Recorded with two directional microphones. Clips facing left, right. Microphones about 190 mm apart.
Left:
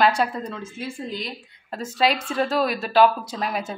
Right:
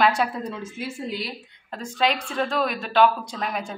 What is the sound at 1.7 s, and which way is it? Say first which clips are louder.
A woman's voice: left 2 dB; 5° left (ahead or behind).